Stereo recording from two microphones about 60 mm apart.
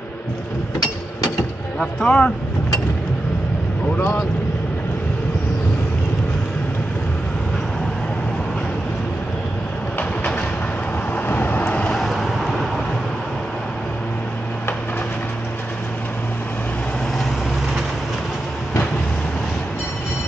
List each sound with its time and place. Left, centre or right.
2.0 s speech: left
11.1 s vehicle: left
12.0 s vehicle: centre